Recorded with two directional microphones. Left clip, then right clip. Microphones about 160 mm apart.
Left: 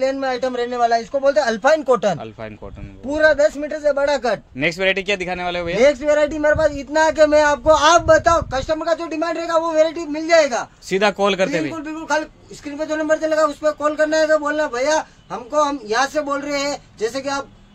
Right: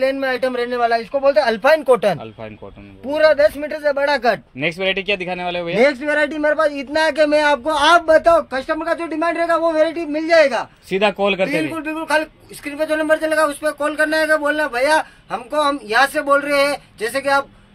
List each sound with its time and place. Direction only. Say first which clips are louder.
0.0 s a man's voice: right 2 dB; 5° right (ahead or behind); by 4.4 s 25° right (ahead or behind)
4.6 s a man's voice: left 1 dB; centre (ahead or behind)
5.8 s a man's voice: left 1 dB; 75° right (ahead or behind); by 10.7 s 50° right (ahead or behind)
10.9 s a man's voice: even; centre (ahead or behind); by 17.5 s 15° left (ahead or behind)